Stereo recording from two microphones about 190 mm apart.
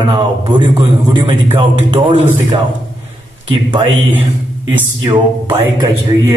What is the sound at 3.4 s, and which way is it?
Speech, 25° right (ahead or behind).